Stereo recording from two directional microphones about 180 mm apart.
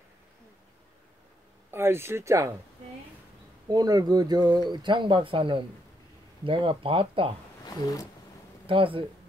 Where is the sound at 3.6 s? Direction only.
20° right (ahead or behind).